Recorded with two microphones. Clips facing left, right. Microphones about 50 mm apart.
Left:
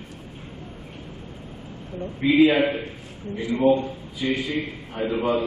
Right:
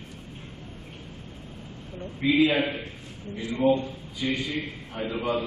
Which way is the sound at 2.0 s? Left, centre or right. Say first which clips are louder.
Left 5 dB; centre.